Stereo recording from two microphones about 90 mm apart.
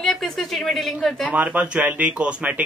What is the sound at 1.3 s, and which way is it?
Speech, 15° right (ahead or behind).